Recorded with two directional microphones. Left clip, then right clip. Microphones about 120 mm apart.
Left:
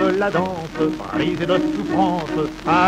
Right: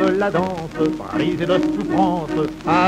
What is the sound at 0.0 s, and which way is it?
Speech, 25° left (ahead or behind).